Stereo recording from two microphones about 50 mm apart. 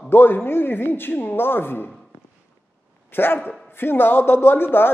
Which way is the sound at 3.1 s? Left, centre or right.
Left.